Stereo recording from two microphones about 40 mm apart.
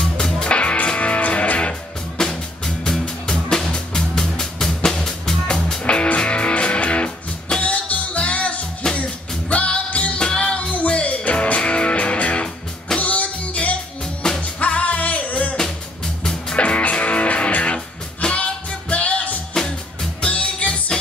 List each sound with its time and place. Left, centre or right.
0.0 s music: centre
0.5 s music: left
2.1 s music: centre
5.9 s music: left
16.5 s music: left
19.5 s music: centre
20.2 s music: left